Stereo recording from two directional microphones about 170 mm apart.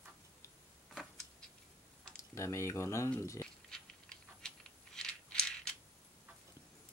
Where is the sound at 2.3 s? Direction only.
15° left (ahead or behind).